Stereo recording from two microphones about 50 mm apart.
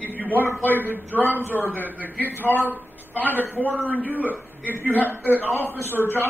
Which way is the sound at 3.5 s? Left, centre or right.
Right.